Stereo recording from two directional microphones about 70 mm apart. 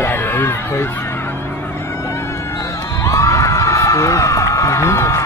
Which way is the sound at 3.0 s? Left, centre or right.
Left.